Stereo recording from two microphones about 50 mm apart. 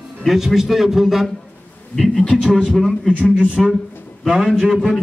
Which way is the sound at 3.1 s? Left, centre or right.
Centre.